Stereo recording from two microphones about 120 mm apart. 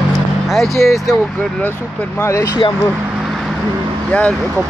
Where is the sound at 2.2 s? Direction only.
30° left (ahead or behind).